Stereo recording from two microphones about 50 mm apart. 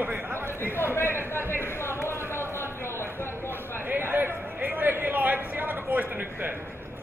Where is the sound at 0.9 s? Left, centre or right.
Left.